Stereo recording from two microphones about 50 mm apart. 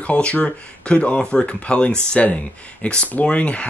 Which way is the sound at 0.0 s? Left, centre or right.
Left.